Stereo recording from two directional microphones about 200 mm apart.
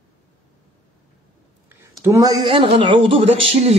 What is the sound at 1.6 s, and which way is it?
Speech, 10° right (ahead or behind).